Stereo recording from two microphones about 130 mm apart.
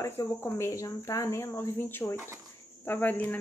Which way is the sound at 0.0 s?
20° left (ahead or behind).